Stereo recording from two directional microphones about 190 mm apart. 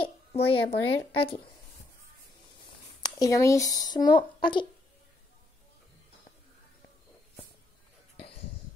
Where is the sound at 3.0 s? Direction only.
20° left (ahead or behind).